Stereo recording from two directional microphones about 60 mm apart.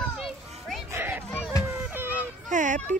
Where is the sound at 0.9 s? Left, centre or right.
Right.